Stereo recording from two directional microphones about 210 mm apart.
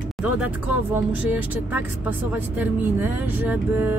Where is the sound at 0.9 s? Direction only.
5° right (ahead or behind).